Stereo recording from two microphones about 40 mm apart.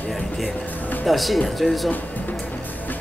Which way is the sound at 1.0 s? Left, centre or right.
Centre.